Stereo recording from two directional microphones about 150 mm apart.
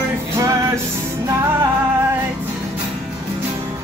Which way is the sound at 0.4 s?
20° right (ahead or behind).